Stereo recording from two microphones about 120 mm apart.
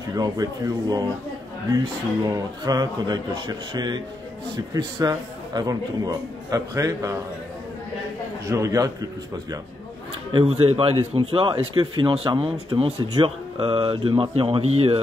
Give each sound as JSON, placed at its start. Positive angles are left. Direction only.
{"t": 0.1, "sound": "speech", "side_deg": -30}
{"t": 2.2, "sound": "a man's voice", "side_deg": -30}
{"t": 8.5, "sound": "a man's voice", "side_deg": -25}
{"t": 10.3, "sound": "speech", "side_deg": -50}
{"t": 12.3, "sound": "speech", "side_deg": -50}